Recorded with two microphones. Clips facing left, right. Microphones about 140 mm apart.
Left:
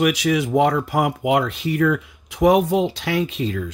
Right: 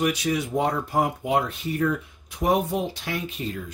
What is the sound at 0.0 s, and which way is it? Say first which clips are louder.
Speech: left 5 dB; 90° left.